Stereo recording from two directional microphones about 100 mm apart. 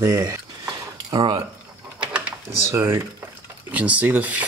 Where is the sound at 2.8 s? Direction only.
25° right (ahead or behind).